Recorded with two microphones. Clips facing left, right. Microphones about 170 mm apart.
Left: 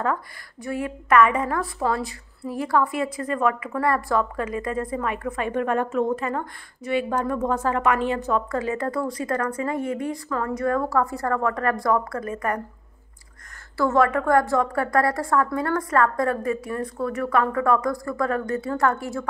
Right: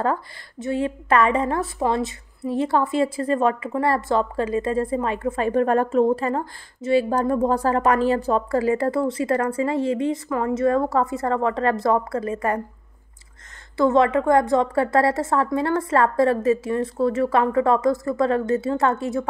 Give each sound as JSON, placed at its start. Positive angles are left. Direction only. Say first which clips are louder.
{"t": 0.0, "sound": "a woman's voice", "louder": "right 2 dB", "side_deg": -30}
{"t": 13.7, "sound": "a woman's voice", "louder": "right 3 dB", "side_deg": -20}